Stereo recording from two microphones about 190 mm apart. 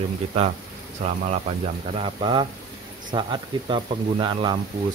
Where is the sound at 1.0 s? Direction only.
35° right (ahead or behind).